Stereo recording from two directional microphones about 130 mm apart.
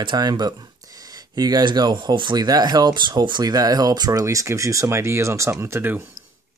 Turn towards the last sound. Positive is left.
turn(degrees=-15)  # may be behind; listen again after turning